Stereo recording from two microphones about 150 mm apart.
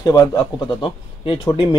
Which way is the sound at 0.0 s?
25° left (ahead or behind).